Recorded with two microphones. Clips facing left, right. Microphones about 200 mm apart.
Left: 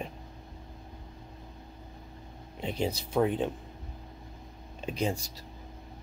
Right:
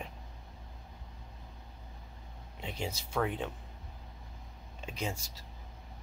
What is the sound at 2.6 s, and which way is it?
Speech, 35° left (ahead or behind).